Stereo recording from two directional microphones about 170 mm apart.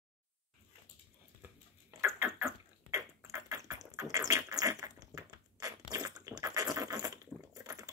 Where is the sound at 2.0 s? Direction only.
15° right (ahead or behind).